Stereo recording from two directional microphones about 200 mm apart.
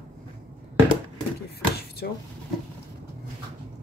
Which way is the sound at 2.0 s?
55° left (ahead or behind).